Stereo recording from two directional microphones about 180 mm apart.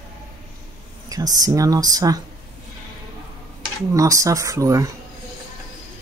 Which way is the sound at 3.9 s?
15° right (ahead or behind).